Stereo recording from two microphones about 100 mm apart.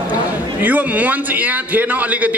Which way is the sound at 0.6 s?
15° right (ahead or behind).